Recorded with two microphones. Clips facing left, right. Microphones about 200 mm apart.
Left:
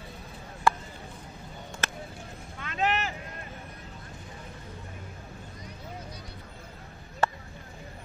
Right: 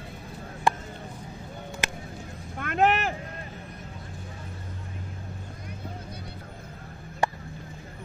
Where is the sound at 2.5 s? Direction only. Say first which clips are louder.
Right 6 dB; 55° right (ahead or behind).